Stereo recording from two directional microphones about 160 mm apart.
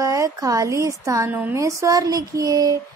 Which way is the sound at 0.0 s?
20° right (ahead or behind).